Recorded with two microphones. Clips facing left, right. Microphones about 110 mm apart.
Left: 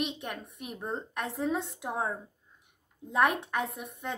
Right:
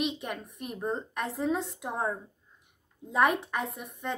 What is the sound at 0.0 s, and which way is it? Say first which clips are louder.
A woman's voice: right 2 dB; centre (ahead or behind).